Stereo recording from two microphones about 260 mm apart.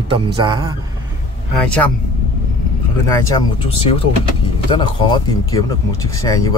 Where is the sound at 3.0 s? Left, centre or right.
Centre.